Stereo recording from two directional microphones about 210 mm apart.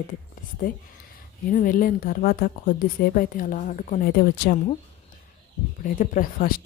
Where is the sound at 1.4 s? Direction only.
40° left (ahead or behind).